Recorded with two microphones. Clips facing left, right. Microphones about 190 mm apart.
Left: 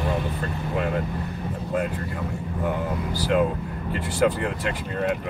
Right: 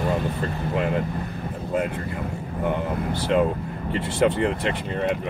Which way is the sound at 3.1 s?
25° right (ahead or behind).